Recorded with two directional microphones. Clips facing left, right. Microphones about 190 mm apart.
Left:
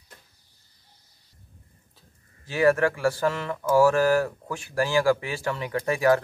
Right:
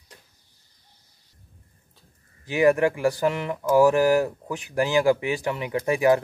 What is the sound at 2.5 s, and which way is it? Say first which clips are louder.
Speech: right 2 dB; 15° right (ahead or behind).